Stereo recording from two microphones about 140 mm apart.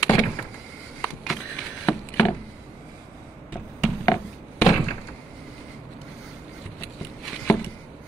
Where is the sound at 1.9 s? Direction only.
15° left (ahead or behind).